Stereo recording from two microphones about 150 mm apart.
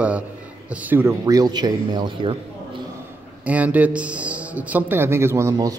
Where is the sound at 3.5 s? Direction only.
10° right (ahead or behind).